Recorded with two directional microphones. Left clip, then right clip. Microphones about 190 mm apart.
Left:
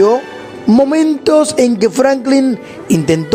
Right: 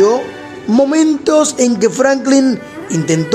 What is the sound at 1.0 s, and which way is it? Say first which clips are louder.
Speech: left 1 dB; 40° left (ahead or behind).